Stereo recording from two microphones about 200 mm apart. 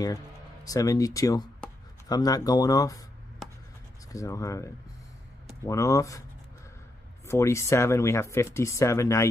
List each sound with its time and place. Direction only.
0.7 s speech: 15° left (ahead or behind)
4.1 s speech: 15° left (ahead or behind)
5.7 s speech: 15° left (ahead or behind)
7.2 s speech: 15° left (ahead or behind)